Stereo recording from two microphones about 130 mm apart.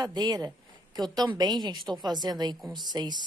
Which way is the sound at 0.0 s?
30° right (ahead or behind).